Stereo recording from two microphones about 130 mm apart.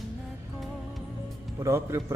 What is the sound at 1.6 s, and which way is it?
Speech, 20° right (ahead or behind).